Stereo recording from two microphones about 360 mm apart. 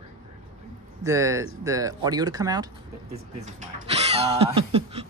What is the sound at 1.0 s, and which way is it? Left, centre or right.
Speech, centre.